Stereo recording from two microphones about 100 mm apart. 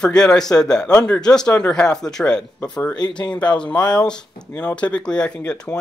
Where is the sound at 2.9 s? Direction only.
45° left (ahead or behind).